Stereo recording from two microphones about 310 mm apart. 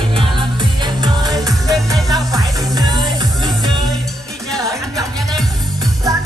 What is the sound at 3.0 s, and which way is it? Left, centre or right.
Music, centre.